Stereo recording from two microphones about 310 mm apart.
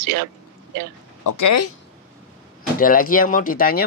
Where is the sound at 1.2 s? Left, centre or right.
Left.